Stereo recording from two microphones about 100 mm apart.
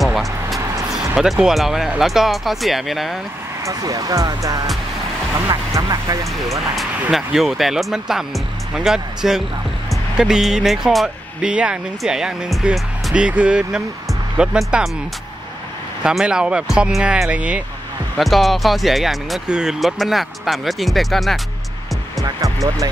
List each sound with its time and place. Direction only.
0.0 s vehicle: centre (ahead or behind)
0.9 s speech: 5° right (ahead or behind)
3.6 s speech: 35° right (ahead or behind)
6.5 s speech: centre (ahead or behind)
16.0 s speech: 5° right (ahead or behind)
18.1 s speech: centre (ahead or behind)
22.2 s speech: 35° right (ahead or behind)